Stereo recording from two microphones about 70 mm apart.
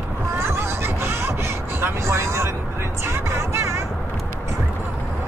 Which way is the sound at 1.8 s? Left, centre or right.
Right.